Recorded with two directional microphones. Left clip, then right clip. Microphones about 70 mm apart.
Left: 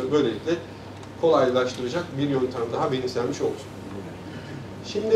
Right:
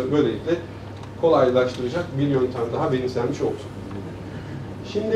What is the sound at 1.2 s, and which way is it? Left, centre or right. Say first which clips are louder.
Speech: right 2 dB; centre.